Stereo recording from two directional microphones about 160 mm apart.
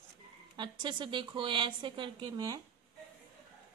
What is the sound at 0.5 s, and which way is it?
A woman's voice, 30° right (ahead or behind).